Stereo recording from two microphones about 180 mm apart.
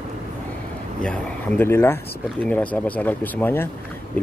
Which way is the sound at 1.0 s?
10° left (ahead or behind).